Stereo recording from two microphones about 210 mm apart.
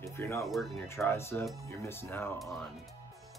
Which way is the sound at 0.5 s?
Centre (ahead or behind).